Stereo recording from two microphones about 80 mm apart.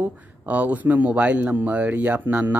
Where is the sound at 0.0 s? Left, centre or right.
Centre.